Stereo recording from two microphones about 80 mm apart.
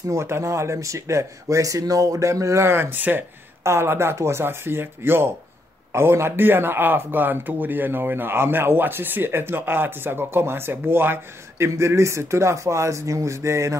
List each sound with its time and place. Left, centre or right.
0.1 s speech: right
2.6 s speech: right